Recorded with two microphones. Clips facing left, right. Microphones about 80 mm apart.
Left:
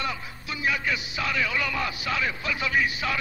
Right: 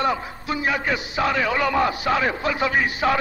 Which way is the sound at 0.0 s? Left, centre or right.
Right.